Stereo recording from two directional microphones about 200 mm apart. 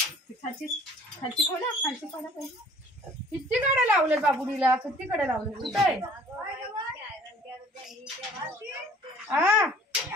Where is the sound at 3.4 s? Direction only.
10° right (ahead or behind).